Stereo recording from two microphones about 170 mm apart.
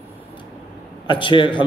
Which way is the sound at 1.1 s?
30° left (ahead or behind).